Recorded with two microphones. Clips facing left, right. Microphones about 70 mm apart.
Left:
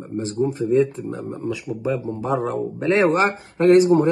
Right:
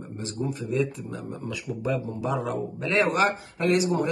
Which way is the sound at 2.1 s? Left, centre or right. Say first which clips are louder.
Left 5 dB; left.